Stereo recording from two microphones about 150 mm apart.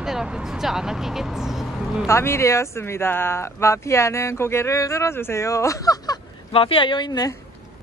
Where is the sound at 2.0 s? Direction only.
20° left (ahead or behind).